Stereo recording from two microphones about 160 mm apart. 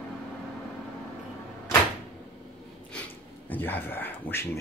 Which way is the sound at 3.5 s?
10° left (ahead or behind).